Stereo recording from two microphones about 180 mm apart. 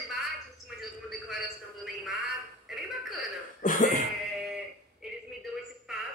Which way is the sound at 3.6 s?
45° left (ahead or behind).